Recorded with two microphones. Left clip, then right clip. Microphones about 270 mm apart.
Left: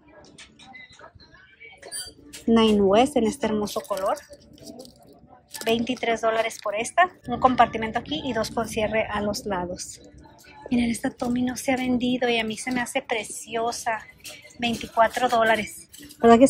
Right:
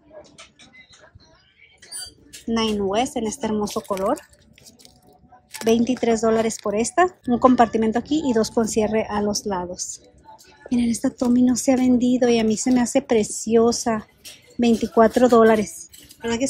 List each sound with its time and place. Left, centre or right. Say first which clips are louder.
2.5 s speech: left 4 dB; centre
5.6 s speech: right 5 dB; centre
16.2 s speech: left 10 dB; centre